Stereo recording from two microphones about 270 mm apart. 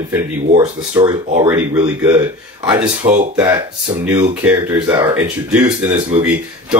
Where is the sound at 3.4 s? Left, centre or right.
Centre.